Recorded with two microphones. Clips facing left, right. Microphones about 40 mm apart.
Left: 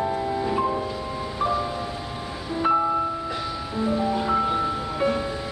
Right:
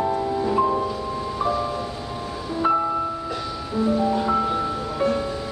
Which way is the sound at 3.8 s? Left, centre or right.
Centre.